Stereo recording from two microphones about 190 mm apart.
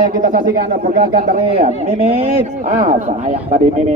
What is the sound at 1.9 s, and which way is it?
A man's voice, 30° right (ahead or behind).